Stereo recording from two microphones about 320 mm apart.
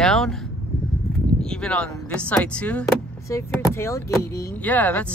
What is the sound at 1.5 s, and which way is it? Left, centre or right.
Speech, centre.